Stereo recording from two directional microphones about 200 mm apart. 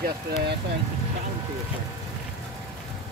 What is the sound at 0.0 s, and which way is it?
Speech, 50° right (ahead or behind).